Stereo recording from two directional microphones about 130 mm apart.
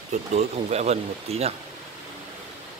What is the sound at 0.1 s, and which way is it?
Speech, 60° right (ahead or behind).